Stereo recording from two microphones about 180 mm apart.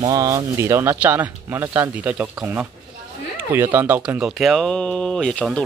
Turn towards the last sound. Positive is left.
turn(degrees=5)  # may be behind; listen again after turning